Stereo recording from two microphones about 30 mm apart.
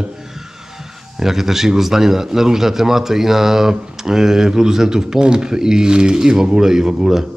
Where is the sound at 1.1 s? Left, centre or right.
Centre.